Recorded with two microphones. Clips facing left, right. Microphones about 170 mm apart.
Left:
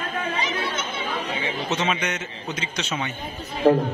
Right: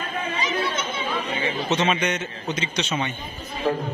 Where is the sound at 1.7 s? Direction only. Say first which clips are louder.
Right 3 dB; centre (ahead or behind).